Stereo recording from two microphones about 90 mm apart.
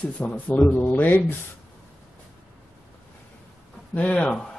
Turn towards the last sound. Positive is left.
turn(degrees=15)  # may be behind; listen again after turning